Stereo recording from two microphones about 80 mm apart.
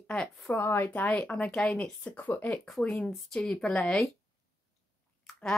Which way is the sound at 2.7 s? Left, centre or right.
Centre.